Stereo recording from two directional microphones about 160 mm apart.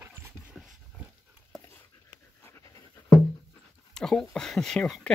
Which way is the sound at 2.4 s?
20° left (ahead or behind).